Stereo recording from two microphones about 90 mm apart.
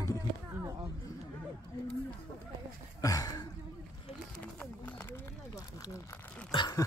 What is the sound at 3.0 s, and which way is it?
Speech, 45° left (ahead or behind).